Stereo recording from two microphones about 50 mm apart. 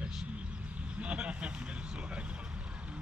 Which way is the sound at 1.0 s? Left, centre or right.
Right.